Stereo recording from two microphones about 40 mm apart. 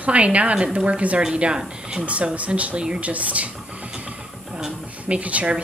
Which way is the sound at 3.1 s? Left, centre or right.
Right.